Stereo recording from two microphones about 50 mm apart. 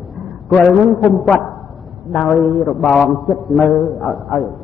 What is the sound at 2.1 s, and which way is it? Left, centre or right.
A man's voice, centre.